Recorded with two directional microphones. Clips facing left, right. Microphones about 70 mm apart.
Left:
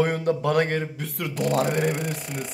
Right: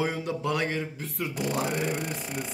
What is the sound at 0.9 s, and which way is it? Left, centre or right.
Speech, left.